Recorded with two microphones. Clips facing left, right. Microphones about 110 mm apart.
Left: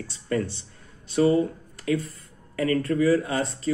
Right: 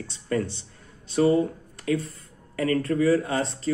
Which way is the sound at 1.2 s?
30° right (ahead or behind).